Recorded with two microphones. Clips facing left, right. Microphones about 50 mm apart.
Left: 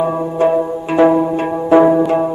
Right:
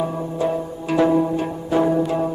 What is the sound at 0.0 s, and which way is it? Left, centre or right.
Music, left.